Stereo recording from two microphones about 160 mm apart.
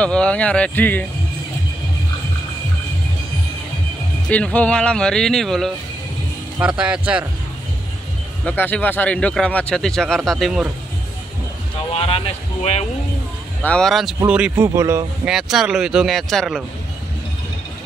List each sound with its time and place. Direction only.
0.0 s speech: 5° left (ahead or behind)
4.3 s speech: 10° left (ahead or behind)
8.5 s speech: 10° left (ahead or behind)
11.9 s speech: 40° left (ahead or behind)
13.6 s speech: 5° left (ahead or behind)
14.2 s speech: 10° right (ahead or behind)
15.2 s speech: centre (ahead or behind)